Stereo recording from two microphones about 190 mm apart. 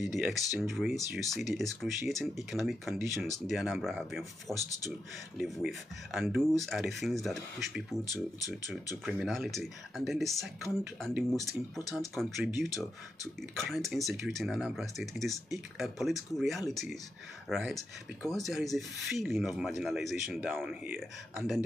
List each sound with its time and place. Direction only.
0.0 s speech: centre (ahead or behind)
8.0 s speech: 20° left (ahead or behind)
9.0 s speech: centre (ahead or behind)
12.6 s speech: 20° left (ahead or behind)
13.4 s speech: centre (ahead or behind)